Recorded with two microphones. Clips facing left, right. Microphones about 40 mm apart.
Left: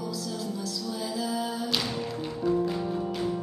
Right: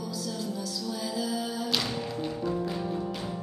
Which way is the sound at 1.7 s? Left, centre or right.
Centre.